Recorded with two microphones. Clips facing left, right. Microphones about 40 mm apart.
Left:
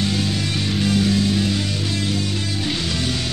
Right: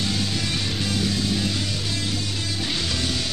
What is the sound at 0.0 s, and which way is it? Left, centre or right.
Music, left.